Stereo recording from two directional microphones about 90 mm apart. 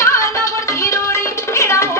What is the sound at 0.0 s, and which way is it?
Music, 35° left (ahead or behind).